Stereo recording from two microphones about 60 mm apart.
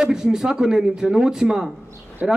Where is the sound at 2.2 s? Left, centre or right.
Right.